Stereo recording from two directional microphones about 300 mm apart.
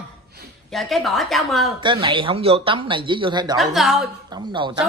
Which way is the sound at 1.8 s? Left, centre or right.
Centre.